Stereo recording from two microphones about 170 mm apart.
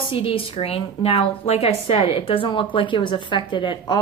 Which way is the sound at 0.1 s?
35° left (ahead or behind).